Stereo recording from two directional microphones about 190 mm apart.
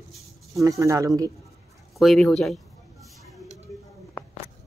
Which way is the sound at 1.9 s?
Centre (ahead or behind).